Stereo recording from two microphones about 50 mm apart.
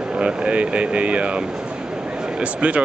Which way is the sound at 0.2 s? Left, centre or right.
Right.